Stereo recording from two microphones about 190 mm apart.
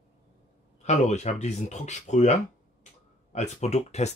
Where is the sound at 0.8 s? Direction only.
35° left (ahead or behind).